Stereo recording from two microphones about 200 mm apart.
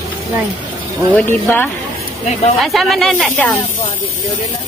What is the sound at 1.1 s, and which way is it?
Speech, 10° left (ahead or behind).